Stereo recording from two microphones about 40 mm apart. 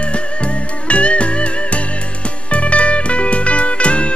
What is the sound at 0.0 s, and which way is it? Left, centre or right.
Music, left.